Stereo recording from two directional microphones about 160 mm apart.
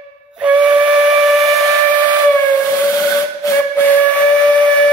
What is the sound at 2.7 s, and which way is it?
Steam whistle, 15° left (ahead or behind).